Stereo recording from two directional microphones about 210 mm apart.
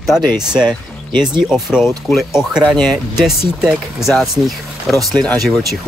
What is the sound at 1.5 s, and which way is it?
Speech, centre (ahead or behind).